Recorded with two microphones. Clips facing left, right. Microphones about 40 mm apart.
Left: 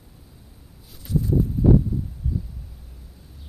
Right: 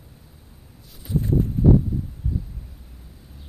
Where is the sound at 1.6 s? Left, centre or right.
Right.